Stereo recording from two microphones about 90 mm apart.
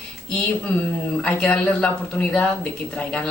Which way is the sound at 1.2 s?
10° left (ahead or behind).